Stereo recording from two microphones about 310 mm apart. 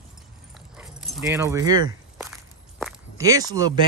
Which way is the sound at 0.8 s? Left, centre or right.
Centre.